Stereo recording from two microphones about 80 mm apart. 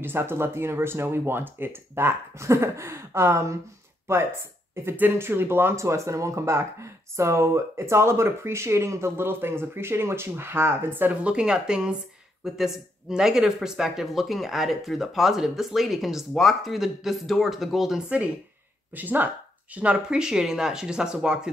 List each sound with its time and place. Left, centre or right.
0.0 s speech: right
11.2 s speech: centre
18.9 s speech: right